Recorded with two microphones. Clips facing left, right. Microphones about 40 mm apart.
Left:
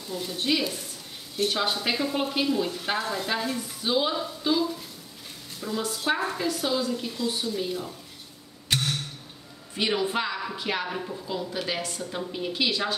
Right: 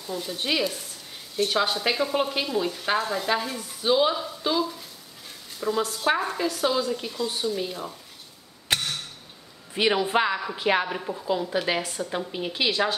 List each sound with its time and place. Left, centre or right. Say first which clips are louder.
0.0 s stir: even; centre
5.6 s speech: right 4 dB; centre
6.0 s stir: right 1 dB; centre
9.8 s a woman's voice: right 4 dB; right